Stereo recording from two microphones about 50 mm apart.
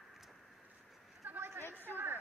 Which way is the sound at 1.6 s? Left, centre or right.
Left.